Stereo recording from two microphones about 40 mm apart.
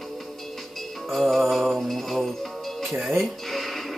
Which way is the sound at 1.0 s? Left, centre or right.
Centre.